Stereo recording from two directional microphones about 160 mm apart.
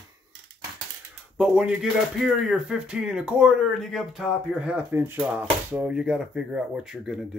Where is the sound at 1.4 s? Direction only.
5° right (ahead or behind).